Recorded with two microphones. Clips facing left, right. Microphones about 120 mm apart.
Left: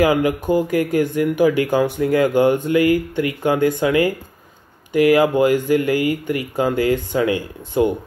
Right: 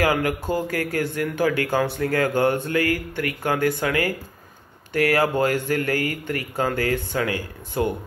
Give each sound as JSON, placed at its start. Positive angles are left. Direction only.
{"t": 0.0, "sound": "a man's voice", "side_deg": 20}